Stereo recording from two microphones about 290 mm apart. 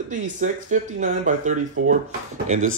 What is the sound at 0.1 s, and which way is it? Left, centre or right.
A man's voice, right.